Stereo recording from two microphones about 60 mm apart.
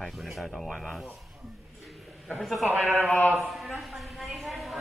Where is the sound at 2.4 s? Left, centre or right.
Centre.